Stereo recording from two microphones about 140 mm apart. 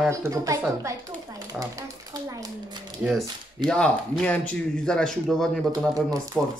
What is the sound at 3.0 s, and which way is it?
Speech, centre (ahead or behind).